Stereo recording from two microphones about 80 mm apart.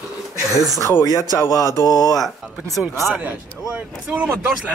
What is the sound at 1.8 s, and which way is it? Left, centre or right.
Speech, left.